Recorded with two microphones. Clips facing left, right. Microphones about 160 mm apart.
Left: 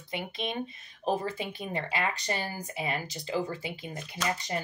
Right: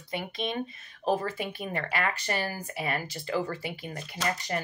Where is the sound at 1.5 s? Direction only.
20° left (ahead or behind).